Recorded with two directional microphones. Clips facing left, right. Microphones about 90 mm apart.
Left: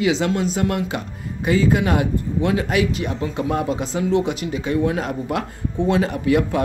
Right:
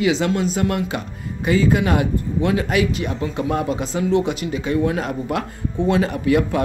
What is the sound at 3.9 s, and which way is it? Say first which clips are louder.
Speech: right 1 dB; 15° left (ahead or behind).